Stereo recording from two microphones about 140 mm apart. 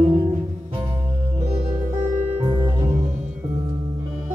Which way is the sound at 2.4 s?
35° right (ahead or behind).